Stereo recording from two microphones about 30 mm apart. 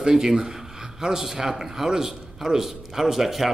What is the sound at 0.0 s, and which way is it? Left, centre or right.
A man's voice, centre.